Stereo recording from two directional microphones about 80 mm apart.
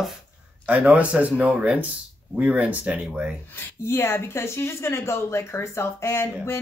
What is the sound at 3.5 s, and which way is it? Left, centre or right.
A woman's voice, left.